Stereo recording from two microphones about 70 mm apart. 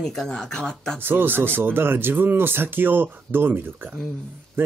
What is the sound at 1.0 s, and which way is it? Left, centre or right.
Speech, right.